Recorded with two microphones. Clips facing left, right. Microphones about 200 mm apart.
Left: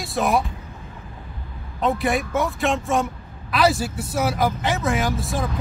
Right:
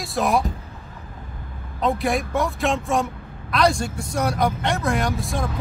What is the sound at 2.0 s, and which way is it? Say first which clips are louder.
Speech: even; centre (ahead or behind).